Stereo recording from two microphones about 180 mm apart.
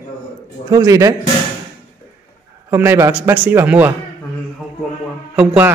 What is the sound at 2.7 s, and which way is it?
A man's voice, 15° right (ahead or behind).